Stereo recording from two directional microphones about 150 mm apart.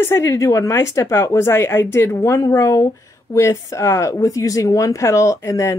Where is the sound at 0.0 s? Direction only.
20° left (ahead or behind).